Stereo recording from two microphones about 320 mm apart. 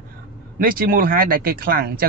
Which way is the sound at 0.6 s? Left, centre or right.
Right.